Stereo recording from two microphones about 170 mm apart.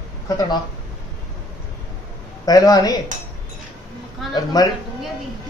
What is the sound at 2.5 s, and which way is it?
Speech, 20° left (ahead or behind).